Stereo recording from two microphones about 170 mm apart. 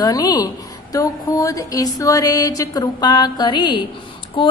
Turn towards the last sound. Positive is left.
turn(degrees=30)  # may be behind; listen again after turning